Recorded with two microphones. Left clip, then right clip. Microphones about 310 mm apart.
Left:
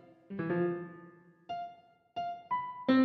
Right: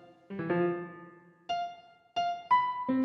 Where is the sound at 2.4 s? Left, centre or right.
Right.